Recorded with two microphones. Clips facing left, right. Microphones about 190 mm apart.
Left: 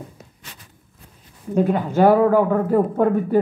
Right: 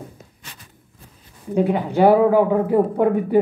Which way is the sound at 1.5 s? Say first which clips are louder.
Even; 15° right (ahead or behind).